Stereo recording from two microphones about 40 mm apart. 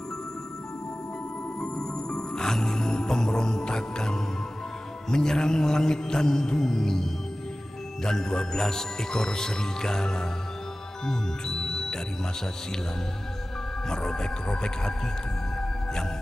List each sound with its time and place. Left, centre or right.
1.6 s music: centre
5.1 s speech: centre
11.1 s music: centre
13.8 s speech: centre